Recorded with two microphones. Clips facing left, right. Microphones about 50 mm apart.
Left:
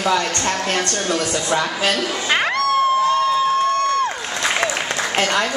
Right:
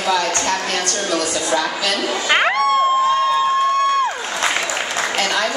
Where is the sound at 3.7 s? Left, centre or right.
Centre.